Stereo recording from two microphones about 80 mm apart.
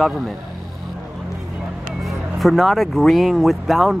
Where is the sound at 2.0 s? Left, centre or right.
Centre.